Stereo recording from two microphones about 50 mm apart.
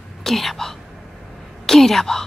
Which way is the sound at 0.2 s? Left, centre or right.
Centre.